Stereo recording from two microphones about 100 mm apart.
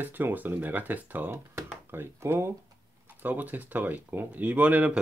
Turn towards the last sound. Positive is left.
turn(degrees=-15)  # may be behind; listen again after turning